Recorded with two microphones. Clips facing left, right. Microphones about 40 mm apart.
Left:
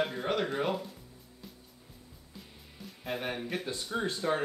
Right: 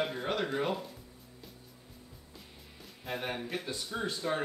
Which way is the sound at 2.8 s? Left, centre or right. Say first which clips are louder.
Left 2 dB; centre.